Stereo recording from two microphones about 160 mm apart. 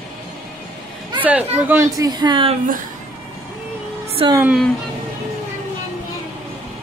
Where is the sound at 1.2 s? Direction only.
10° right (ahead or behind); by 2.5 s 30° right (ahead or behind).